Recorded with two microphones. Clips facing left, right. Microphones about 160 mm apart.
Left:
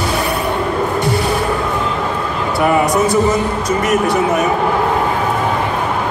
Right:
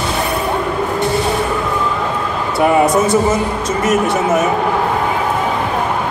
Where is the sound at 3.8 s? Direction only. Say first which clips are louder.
Right 1 dB; 25° right (ahead or behind).